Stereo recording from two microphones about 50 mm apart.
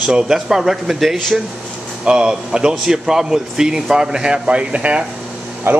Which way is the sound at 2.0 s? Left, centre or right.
Centre.